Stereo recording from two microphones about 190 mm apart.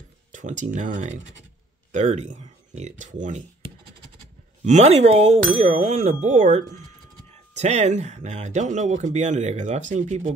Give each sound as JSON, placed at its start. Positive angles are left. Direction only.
{"t": 0.3, "sound": "speech", "side_deg": -40}
{"t": 4.6, "sound": "speech", "side_deg": -35}